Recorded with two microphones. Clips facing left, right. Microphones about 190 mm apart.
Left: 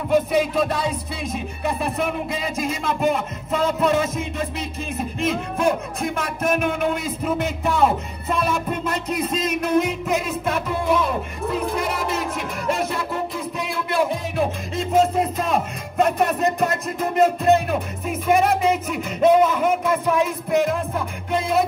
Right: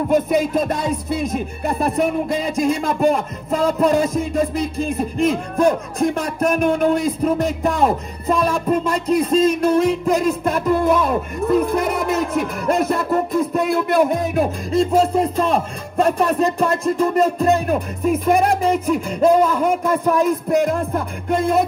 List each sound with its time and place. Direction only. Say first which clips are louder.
0.1 s speech: even; 45° right (ahead or behind)
2.0 s speech: right 6 dB; 35° right (ahead or behind)
10.5 s speech: right 3 dB; 45° right (ahead or behind)
12.6 s music: right 4 dB; centre (ahead or behind)
12.9 s music: right 7 dB; 55° right (ahead or behind)
13.6 s speech: right 5 dB; 50° right (ahead or behind)
14.8 s speech: right 3 dB; 35° right (ahead or behind)